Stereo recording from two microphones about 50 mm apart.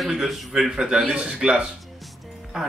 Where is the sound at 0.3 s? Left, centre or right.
Centre.